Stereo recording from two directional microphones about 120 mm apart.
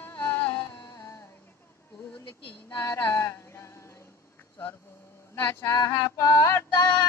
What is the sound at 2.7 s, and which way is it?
Music, 20° left (ahead or behind).